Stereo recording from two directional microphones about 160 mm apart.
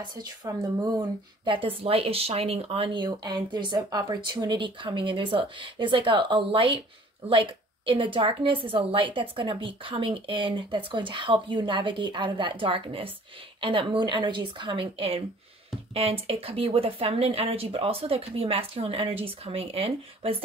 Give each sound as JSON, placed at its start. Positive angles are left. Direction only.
{"t": 0.1, "sound": "speech", "side_deg": -20}